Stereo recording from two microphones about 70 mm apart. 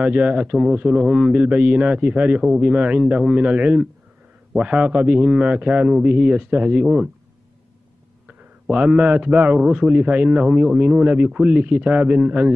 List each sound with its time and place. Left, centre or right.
0.0 s a man's voice: centre
8.6 s a man's voice: centre